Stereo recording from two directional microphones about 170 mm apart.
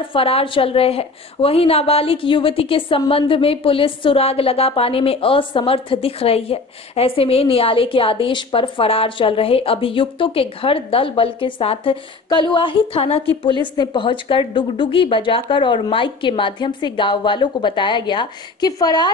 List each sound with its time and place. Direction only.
0.1 s a woman's voice: 35° left (ahead or behind)